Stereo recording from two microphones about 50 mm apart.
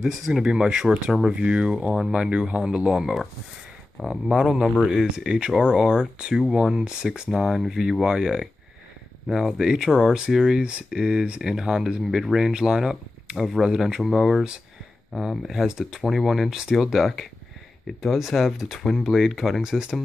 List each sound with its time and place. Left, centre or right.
0.0 s speech: centre
0.5 s speech: centre
7.2 s speech: centre
16.0 s speech: centre
19.0 s speech: centre